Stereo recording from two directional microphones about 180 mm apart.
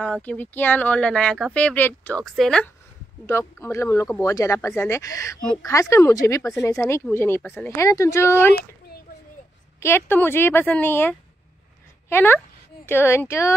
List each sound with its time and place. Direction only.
0.0 s speech: 10° left (ahead or behind)
3.3 s speech: 15° left (ahead or behind)
9.8 s speech: 15° left (ahead or behind)